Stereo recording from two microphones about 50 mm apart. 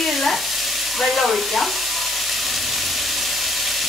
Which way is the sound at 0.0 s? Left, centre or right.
Centre.